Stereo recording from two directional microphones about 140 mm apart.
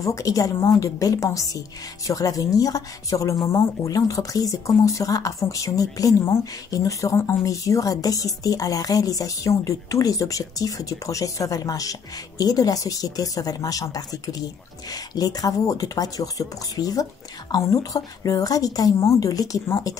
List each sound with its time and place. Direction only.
0.0 s speech: 25° left (ahead or behind)